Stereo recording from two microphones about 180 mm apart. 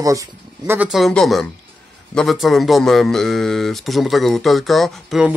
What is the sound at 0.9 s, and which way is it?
A man's voice, centre (ahead or behind).